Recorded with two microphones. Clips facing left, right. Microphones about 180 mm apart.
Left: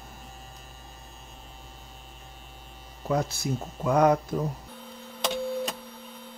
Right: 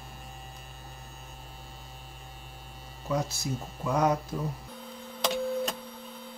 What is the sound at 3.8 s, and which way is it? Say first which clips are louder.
Speech: left 5 dB; 60° left (ahead or behind).